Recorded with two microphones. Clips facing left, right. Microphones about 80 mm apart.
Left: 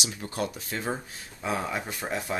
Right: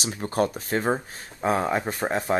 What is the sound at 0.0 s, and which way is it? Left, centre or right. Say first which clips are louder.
Speech: right 7 dB; right.